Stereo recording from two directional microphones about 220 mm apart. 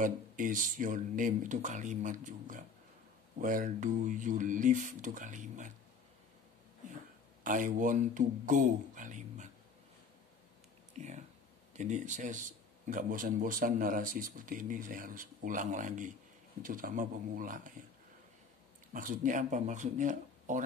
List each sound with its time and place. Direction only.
0.0 s a man's voice: 35° right (ahead or behind)
7.4 s a man's voice: 35° right (ahead or behind)
11.0 s a sound: 30° right (ahead or behind)
11.7 s a man's voice: 35° right (ahead or behind)
18.9 s a man's voice: 35° right (ahead or behind)